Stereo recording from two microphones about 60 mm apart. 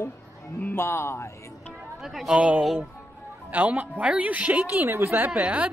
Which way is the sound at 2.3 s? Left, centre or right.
Right.